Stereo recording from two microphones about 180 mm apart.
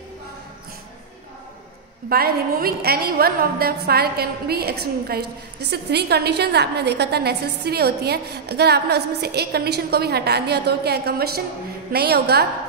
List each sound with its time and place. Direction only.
2.0 s a woman's voice: 55° right (ahead or behind)